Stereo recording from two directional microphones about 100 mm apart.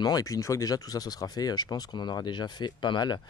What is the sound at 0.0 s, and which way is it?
Speech, 35° left (ahead or behind).